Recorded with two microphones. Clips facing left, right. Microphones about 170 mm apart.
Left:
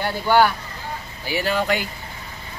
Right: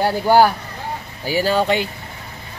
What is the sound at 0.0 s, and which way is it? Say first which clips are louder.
Speech: right 4 dB; 35° right (ahead or behind).